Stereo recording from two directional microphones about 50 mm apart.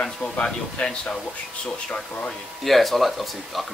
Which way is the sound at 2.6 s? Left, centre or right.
Centre.